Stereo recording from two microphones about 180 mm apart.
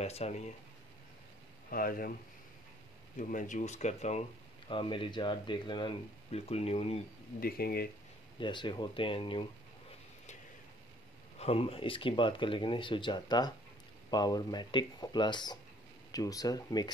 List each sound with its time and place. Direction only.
0.0 s speech: 35° left (ahead or behind)
1.7 s speech: 55° left (ahead or behind)
3.2 s speech: 45° left (ahead or behind)
7.3 s speech: 55° left (ahead or behind)
8.4 s speech: 25° left (ahead or behind)
11.3 s speech: 35° left (ahead or behind)